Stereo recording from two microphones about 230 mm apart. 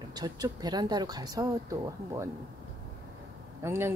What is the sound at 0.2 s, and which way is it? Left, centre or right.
Speech, centre.